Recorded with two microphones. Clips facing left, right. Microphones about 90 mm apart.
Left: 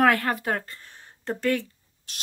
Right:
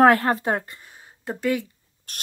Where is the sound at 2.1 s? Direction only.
50° right (ahead or behind).